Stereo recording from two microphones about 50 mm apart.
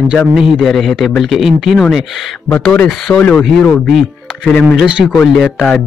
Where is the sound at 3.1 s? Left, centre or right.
Centre.